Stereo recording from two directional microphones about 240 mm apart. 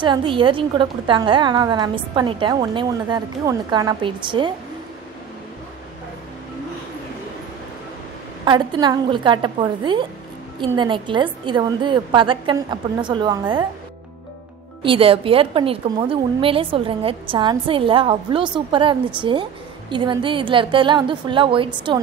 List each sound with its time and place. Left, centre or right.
0.0 s a woman's voice: right
8.5 s a woman's voice: centre
14.8 s a woman's voice: right